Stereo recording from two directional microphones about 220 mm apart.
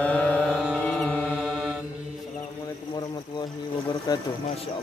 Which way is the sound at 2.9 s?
20° left (ahead or behind).